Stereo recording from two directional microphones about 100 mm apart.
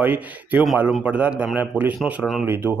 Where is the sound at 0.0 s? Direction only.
15° right (ahead or behind).